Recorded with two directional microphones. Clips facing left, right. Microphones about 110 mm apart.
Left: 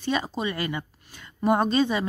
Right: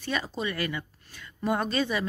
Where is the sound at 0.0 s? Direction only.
20° left (ahead or behind).